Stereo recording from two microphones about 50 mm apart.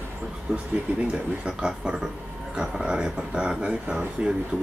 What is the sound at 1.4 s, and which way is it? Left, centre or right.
Speech, centre.